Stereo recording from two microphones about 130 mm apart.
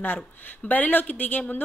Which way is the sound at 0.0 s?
15° left (ahead or behind).